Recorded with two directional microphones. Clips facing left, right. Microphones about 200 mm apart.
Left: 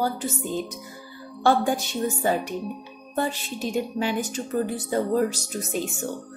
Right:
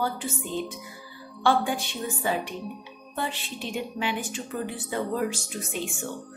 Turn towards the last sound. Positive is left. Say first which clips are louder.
# left 4 dB
turn(degrees=40)  # may be behind; listen again after turning